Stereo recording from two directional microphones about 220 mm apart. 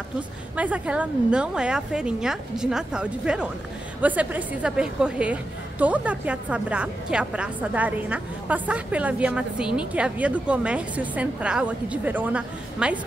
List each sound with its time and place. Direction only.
0.6 s a woman's voice: 5° right (ahead or behind)